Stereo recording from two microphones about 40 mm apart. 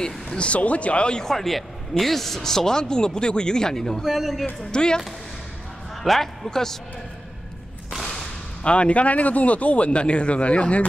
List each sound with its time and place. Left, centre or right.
0.4 s speech: left
1.2 s speech: centre
4.0 s a man's voice: centre
4.6 s speech: left
6.0 s speech: centre
8.6 s speech: left